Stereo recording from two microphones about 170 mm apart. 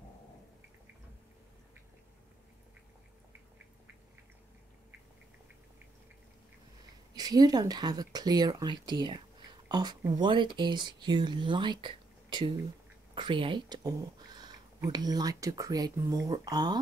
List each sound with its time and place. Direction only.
7.2 s speech: 20° right (ahead or behind)